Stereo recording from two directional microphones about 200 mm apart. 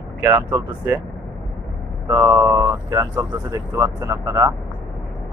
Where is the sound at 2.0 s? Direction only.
15° right (ahead or behind).